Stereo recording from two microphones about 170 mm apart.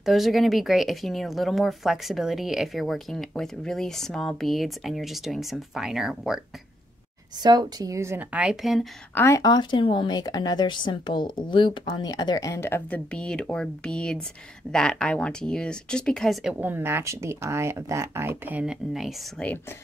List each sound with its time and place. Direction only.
0.0 s speech: centre (ahead or behind)
7.4 s speech: 20° right (ahead or behind); by 8.8 s centre (ahead or behind)
9.1 s speech: 15° left (ahead or behind)
16.6 s speech: 15° right (ahead or behind)